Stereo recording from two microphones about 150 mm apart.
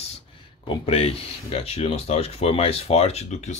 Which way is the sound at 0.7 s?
40° left (ahead or behind).